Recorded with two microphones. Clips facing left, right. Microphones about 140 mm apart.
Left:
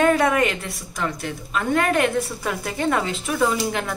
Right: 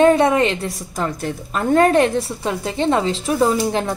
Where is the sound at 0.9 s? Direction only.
40° right (ahead or behind).